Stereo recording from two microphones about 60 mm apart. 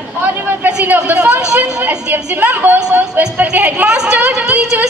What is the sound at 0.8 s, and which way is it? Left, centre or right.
A woman's voice, right.